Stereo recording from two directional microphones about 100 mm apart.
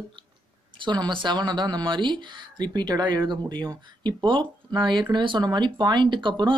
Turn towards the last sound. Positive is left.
turn(degrees=-50)  # may be behind; listen again after turning